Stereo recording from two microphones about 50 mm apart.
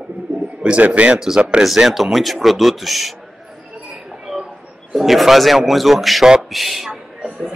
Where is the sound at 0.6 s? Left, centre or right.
Right.